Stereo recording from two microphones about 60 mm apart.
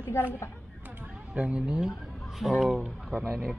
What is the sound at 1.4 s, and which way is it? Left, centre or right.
Speech, centre.